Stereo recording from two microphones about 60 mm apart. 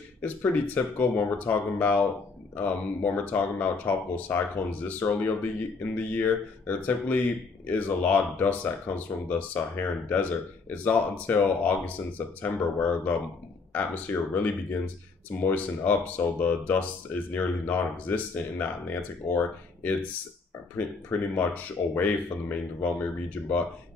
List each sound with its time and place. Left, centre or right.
0.2 s speech: left